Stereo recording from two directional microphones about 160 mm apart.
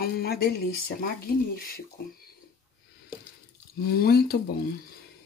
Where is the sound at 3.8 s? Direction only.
70° left (ahead or behind).